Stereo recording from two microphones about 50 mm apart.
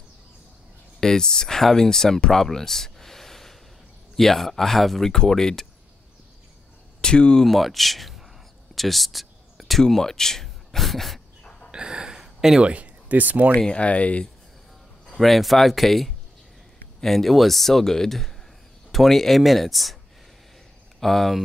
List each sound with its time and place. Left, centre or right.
1.0 s speech: centre
2.4 s a sound: centre
4.2 s speech: centre
7.0 s speech: centre
7.4 s speech: centre
8.7 s a sound: centre
11.7 s a sound: centre
12.6 s speech: right
13.6 s speech: left
15.1 s speech: centre
21.0 s speech: centre